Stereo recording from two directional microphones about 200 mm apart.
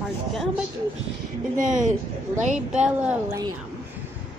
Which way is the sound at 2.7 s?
5° right (ahead or behind).